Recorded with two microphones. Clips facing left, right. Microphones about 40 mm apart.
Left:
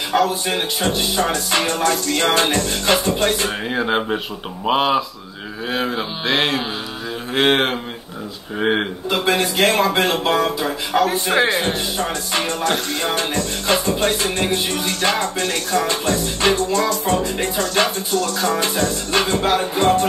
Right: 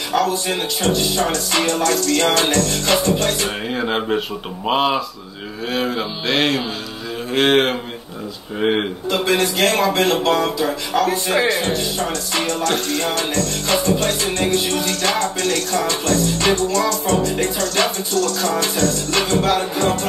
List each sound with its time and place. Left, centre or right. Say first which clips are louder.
0.1 s music: even; centre
3.6 s speech: left 2 dB; centre
5.7 s music: right 1 dB; centre
8.5 s speech: even; centre
9.2 s music: even; centre